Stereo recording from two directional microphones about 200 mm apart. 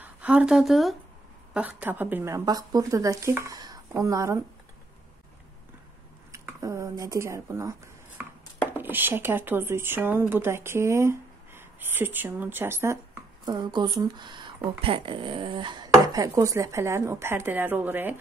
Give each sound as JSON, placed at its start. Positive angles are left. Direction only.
{"t": 0.0, "sound": "speech", "side_deg": -5}
{"t": 6.3, "sound": "speech", "side_deg": -15}
{"t": 8.7, "sound": "speech", "side_deg": -10}